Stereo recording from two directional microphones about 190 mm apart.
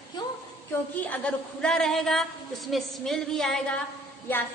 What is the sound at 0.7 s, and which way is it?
A woman's voice, 10° left (ahead or behind).